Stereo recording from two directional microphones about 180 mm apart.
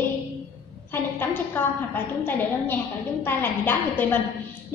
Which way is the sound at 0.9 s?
10° left (ahead or behind).